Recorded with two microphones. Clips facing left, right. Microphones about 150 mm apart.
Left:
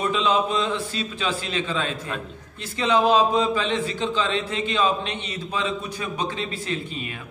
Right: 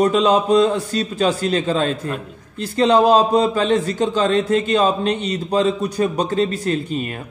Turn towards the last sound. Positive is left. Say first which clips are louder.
# right 8 dB
turn(degrees=-45)  # may be behind; listen again after turning